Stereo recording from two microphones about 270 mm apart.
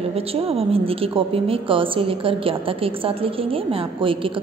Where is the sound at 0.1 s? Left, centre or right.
Right.